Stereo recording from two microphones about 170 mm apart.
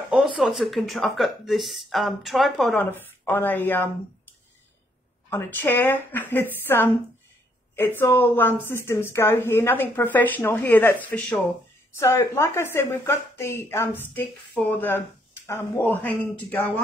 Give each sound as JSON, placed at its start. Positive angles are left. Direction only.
{"t": 0.1, "sound": "speech", "side_deg": 0}
{"t": 5.3, "sound": "a woman's voice", "side_deg": 15}